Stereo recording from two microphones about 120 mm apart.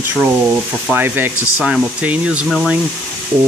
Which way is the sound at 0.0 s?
15° right (ahead or behind).